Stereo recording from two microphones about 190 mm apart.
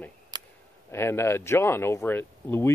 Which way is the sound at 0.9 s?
15° left (ahead or behind).